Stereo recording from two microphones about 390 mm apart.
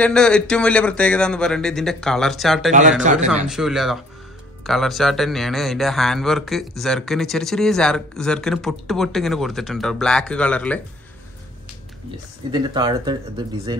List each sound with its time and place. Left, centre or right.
0.0 s a man's voice: centre
3.0 s speech: centre
3.4 s a man's voice: centre
12.4 s speech: centre